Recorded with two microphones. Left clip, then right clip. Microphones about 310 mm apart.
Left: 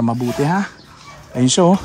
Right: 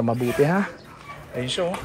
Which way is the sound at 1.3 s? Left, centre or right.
Left.